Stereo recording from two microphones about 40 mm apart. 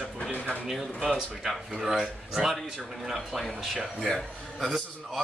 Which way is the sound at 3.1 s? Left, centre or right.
Centre.